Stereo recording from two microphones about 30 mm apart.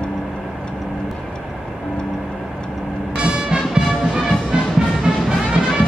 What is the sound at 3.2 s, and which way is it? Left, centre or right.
Music, right.